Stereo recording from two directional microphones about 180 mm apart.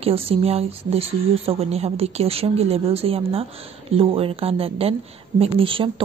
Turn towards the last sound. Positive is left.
turn(degrees=-30)  # may be behind; listen again after turning